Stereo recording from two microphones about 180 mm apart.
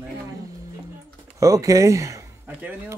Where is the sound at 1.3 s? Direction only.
20° right (ahead or behind).